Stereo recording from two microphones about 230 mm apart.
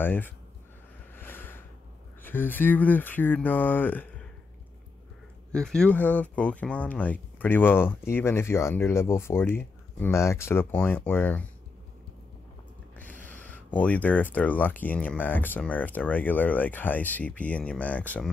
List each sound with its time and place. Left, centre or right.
0.0 s speech: centre
1.1 s a sound: centre
2.2 s speech: centre
5.5 s speech: centre
12.9 s speech: centre